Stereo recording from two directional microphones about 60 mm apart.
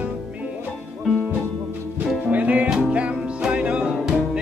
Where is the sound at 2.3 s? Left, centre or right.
Right.